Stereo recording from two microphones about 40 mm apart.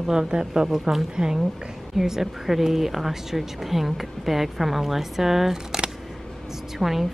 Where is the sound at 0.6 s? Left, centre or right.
Centre.